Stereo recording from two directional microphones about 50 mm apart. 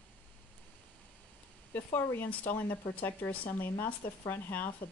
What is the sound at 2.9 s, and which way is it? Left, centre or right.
Speech, left.